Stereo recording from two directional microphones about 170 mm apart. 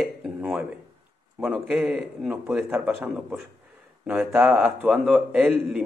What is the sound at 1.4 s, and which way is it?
A man's voice, 5° right (ahead or behind).